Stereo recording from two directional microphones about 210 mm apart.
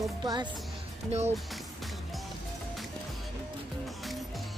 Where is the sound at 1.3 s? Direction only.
Centre (ahead or behind).